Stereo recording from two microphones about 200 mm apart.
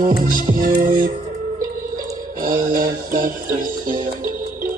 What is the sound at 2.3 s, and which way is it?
Mantra, 40° right (ahead or behind).